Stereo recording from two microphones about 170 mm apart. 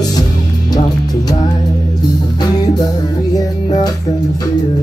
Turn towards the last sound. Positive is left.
turn(degrees=20)  # may be behind; listen again after turning